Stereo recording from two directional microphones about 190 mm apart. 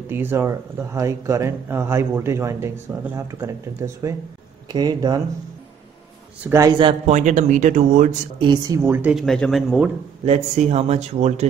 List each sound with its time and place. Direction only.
0.1 s speech: 10° right (ahead or behind)
6.4 s speech: 15° right (ahead or behind)
6.8 s speech: 35° right (ahead or behind)
8.4 s speech: 20° right (ahead or behind); by 9.9 s 5° right (ahead or behind)
10.2 s speech: 35° right (ahead or behind)